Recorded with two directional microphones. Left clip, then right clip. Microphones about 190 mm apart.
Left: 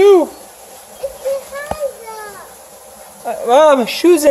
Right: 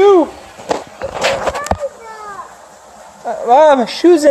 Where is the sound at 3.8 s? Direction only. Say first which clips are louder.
Right 1 dB; 25° left (ahead or behind).